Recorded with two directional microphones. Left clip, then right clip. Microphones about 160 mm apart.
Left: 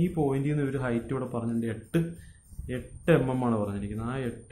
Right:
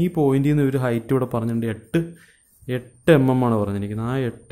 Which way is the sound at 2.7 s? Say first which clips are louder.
Right 8 dB; 60° right (ahead or behind).